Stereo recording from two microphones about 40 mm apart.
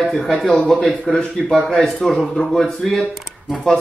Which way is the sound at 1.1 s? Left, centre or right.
Left.